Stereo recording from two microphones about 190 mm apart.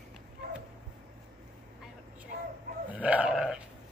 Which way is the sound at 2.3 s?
50° right (ahead or behind).